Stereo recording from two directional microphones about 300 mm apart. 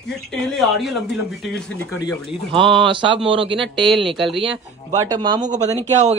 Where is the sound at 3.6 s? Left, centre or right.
Centre.